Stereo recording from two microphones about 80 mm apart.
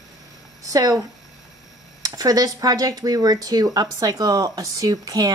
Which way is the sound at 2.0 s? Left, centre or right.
Right.